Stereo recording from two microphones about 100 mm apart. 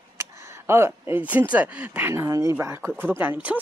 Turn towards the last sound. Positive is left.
turn(degrees=-15)  # may be behind; listen again after turning